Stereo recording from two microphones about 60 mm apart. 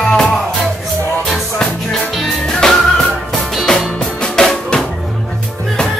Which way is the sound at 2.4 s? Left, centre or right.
Centre.